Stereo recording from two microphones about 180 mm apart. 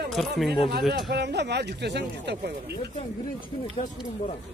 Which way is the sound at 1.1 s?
70° right (ahead or behind).